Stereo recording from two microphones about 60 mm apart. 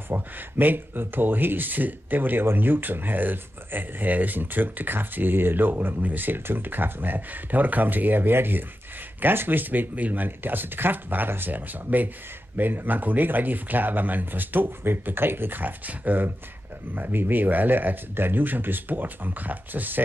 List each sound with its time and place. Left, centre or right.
0.1 s speech: right